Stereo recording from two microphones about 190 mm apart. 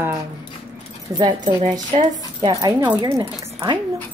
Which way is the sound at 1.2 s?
25° right (ahead or behind).